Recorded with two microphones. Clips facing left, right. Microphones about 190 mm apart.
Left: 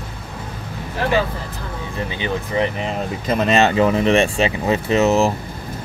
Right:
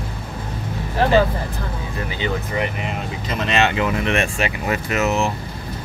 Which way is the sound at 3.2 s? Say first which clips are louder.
Left 4 dB; 40° left (ahead or behind).